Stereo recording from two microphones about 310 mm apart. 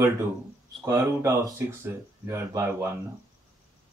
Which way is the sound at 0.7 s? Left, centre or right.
Centre.